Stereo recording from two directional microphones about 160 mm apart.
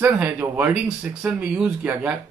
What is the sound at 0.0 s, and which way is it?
Speech, 10° right (ahead or behind).